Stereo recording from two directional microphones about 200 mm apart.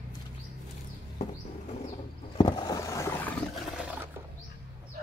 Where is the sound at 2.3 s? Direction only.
20° left (ahead or behind); by 3.8 s 5° left (ahead or behind).